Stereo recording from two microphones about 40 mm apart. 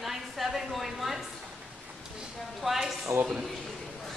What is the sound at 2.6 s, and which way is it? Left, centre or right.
Speech, centre.